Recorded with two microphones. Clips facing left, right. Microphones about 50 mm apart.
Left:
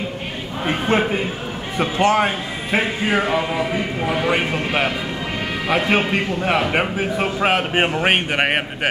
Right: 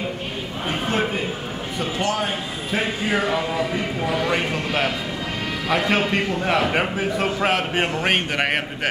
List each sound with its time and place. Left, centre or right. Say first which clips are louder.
0.7 s a sound: left 5 dB; left
1.8 s a man's voice: left 7 dB; left
2.1 s a man's voice: left 6 dB; left
3.1 s a man's voice: left 2 dB; left